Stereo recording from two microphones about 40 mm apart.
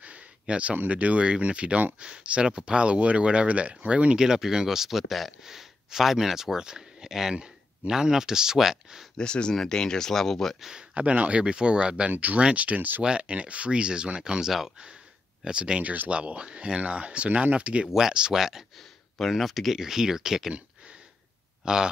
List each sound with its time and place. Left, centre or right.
0.0 s a sound: right
0.8 s speech: right; by 9.0 s centre
9.1 s speech: left; by 10.6 s centre
10.6 s speech: centre
11.0 s speech: right
14.4 s speech: centre
15.4 s speech: right
15.8 s speech: right
16.1 s speech: right
18.3 s speech: centre
18.8 s a sound: centre
19.3 s speech: centre
19.8 s speech: centre
21.6 s a man's voice: centre